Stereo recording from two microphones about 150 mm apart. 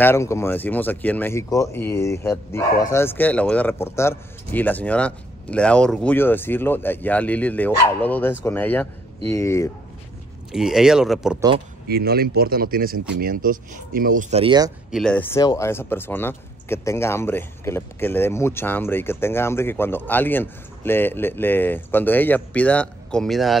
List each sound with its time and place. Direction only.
0.0 s speech: 15° left (ahead or behind)
10.5 s speech: 5° right (ahead or behind)
11.9 s speech: 90° right; by 14.2 s 70° right (ahead or behind)
14.3 s speech: 35° right (ahead or behind)
14.9 s speech: centre (ahead or behind)
15.1 s speech: 20° left (ahead or behind); by 23.6 s centre (ahead or behind)